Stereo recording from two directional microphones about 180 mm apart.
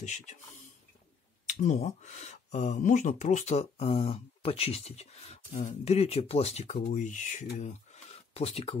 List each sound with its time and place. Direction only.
0.0 s speech: 40° left (ahead or behind)
1.5 s speech: 40° left (ahead or behind)